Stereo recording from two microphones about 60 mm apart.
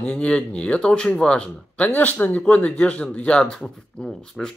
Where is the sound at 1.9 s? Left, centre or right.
Left.